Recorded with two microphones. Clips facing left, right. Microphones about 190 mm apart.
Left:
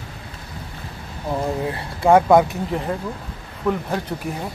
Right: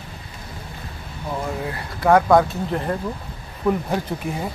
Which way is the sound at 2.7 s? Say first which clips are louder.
Right 2 dB; centre (ahead or behind).